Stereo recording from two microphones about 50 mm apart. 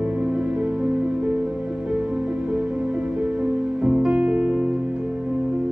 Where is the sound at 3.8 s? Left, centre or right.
Centre.